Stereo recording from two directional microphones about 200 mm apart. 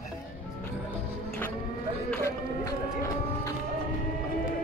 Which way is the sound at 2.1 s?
15° left (ahead or behind).